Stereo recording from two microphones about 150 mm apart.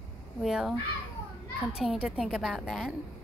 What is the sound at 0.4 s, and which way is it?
Speech, centre (ahead or behind).